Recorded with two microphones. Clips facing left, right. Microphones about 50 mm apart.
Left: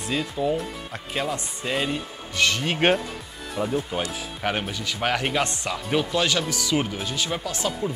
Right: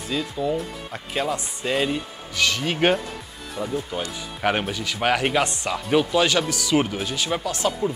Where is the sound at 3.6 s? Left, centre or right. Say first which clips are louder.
Left 2 dB; left.